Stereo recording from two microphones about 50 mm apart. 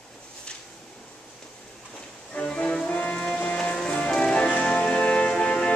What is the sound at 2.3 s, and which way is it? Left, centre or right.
Music, left.